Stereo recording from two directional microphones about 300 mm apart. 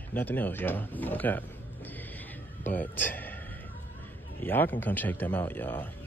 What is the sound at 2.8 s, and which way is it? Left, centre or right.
Speech, centre.